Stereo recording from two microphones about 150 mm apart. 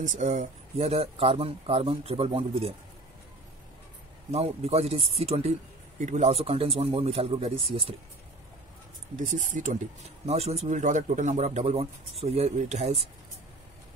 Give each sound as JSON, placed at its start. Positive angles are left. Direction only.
{"t": 0.0, "sound": "speech", "side_deg": -55}
{"t": 4.3, "sound": "speech", "side_deg": -45}
{"t": 5.9, "sound": "speech", "side_deg": -55}
{"t": 9.2, "sound": "speech", "side_deg": -55}
{"t": 10.2, "sound": "speech", "side_deg": -45}